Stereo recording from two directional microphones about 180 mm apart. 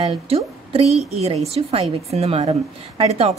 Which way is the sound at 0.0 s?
35° right (ahead or behind).